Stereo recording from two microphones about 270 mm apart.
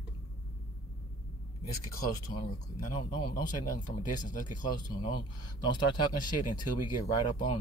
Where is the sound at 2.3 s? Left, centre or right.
Left.